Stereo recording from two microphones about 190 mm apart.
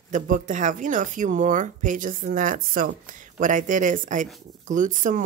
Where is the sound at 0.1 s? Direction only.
40° right (ahead or behind).